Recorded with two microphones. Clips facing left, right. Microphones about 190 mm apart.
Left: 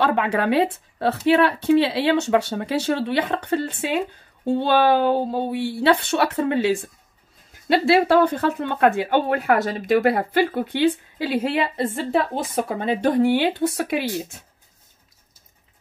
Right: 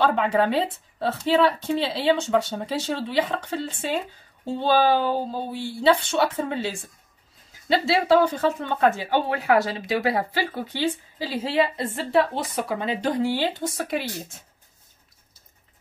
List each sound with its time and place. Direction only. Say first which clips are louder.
0.0 s speech: even; 65° left (ahead or behind)